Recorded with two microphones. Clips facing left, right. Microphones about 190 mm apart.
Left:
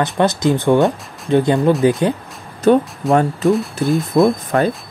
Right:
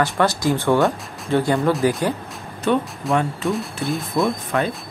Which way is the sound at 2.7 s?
40° left (ahead or behind).